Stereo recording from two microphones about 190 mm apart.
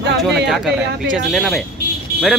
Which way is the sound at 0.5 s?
Centre (ahead or behind).